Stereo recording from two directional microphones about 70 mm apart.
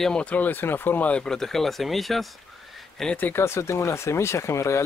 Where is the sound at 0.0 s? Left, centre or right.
Centre.